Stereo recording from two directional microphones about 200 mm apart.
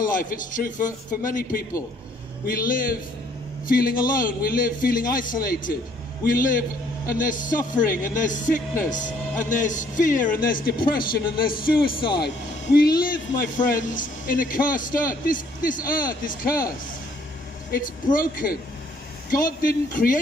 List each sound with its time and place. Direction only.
0.0 s a man's voice: 45° left (ahead or behind)
18.1 s a man's voice: 45° left (ahead or behind)